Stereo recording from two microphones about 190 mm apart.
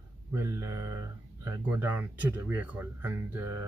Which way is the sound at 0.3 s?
15° right (ahead or behind).